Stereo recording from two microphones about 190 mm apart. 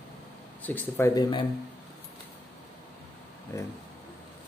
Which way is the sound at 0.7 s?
10° left (ahead or behind).